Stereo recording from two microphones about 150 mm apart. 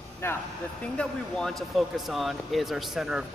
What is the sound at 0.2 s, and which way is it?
Speech, 15° left (ahead or behind).